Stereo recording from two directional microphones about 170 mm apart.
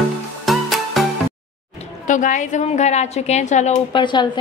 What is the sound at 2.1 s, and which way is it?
A woman's voice, 50° left (ahead or behind).